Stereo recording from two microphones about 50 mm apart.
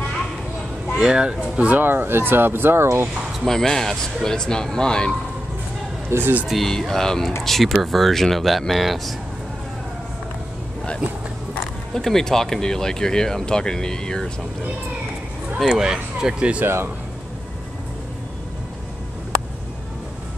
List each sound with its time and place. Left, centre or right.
0.9 s speech: centre
1.7 s speech: right
3.4 s speech: centre
6.0 s speech: right
6.4 s speech: centre
11.9 s speech: centre
15.6 s speech: centre
16.6 s speech: right